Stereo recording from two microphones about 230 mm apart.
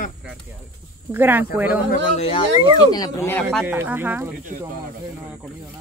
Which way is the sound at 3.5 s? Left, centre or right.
Centre.